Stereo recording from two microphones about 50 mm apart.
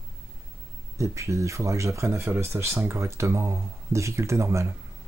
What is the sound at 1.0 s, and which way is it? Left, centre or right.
Speech, right.